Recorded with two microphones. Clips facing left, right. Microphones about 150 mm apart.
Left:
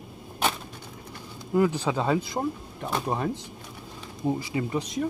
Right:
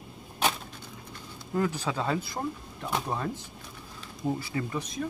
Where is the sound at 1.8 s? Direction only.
20° left (ahead or behind).